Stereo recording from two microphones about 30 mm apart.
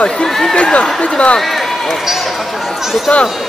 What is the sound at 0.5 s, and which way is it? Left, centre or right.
Speech, left.